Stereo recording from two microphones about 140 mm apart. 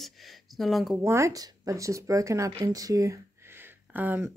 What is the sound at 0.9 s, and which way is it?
A woman's voice, 20° right (ahead or behind).